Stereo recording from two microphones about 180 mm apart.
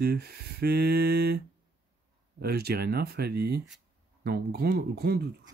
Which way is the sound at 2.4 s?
60° right (ahead or behind).